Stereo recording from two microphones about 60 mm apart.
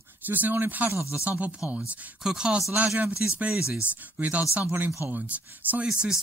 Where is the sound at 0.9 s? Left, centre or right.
Left.